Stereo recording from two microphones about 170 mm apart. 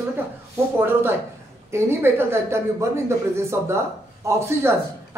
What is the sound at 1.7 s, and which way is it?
Speech, 15° right (ahead or behind).